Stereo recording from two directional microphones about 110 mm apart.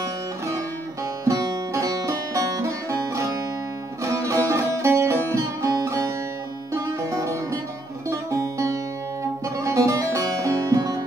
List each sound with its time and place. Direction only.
1.2 s music: 30° right (ahead or behind)